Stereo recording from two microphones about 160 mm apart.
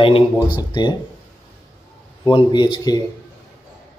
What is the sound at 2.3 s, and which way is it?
Speech, 30° left (ahead or behind).